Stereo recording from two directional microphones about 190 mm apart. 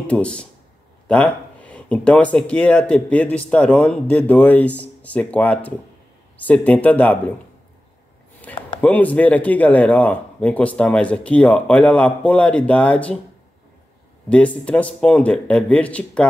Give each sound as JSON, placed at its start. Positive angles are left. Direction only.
{"t": 0.0, "sound": "speech", "side_deg": 5}
{"t": 8.5, "sound": "a sound", "side_deg": 5}
{"t": 8.8, "sound": "speech", "side_deg": 10}
{"t": 14.3, "sound": "speech", "side_deg": 5}